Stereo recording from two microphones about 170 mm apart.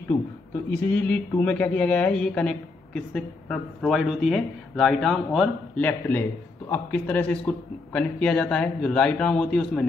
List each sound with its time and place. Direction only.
0.7 s speech: 10° left (ahead or behind)